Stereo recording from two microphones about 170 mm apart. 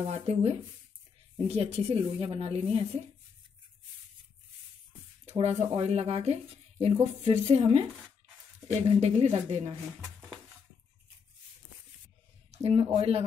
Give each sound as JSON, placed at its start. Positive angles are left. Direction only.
{"t": 0.0, "sound": "speech", "side_deg": -40}
{"t": 5.2, "sound": "speech", "side_deg": -40}
{"t": 9.0, "sound": "speech", "side_deg": -40}
{"t": 12.4, "sound": "speech", "side_deg": -35}